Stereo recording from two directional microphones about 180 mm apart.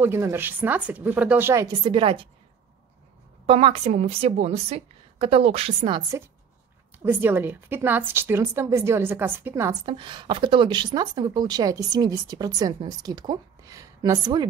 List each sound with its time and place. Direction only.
0.0 s a woman's voice: 15° right (ahead or behind)
1.9 s a woman's voice: 30° right (ahead or behind)
3.4 s a woman's voice: 30° right (ahead or behind); by 9.8 s 15° right (ahead or behind)
9.8 s a woman's voice: 25° right (ahead or behind)